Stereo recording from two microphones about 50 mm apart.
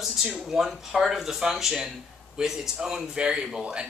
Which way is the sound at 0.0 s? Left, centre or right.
Centre.